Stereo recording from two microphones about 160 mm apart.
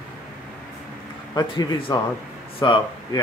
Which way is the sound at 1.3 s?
25° left (ahead or behind).